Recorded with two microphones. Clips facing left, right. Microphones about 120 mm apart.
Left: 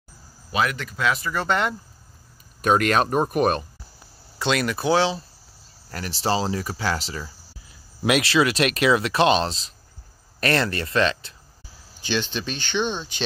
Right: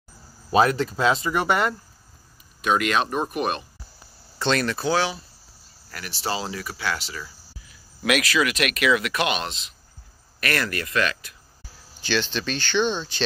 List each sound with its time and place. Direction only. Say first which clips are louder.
0.5 s speech: right 6 dB; 35° right (ahead or behind); by 1.6 s 15° right (ahead or behind)
2.6 s speech: left 3 dB; 45° left (ahead or behind)
4.4 s speech: even; 5° left (ahead or behind)
4.7 s speech: left 3 dB; 20° left (ahead or behind)
5.9 s speech: left 5 dB; 35° left (ahead or behind)
12.1 s speech: right 1 dB; 15° left (ahead or behind)